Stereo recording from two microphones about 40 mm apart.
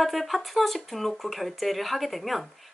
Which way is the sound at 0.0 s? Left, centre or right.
Centre.